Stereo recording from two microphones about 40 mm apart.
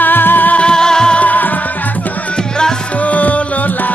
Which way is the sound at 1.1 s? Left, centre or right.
Left.